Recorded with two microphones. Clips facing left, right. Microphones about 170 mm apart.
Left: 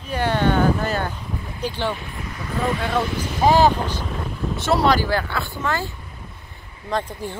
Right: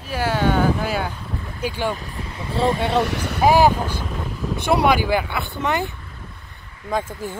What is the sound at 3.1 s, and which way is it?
Speech, 60° right (ahead or behind).